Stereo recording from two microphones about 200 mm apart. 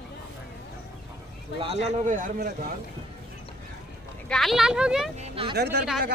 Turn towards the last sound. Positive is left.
turn(degrees=-55)  # may be behind; listen again after turning